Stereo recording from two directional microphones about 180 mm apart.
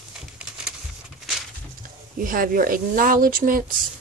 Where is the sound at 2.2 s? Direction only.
50° right (ahead or behind).